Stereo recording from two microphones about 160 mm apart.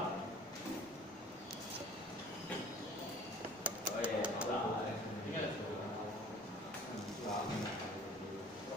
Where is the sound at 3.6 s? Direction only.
5° right (ahead or behind).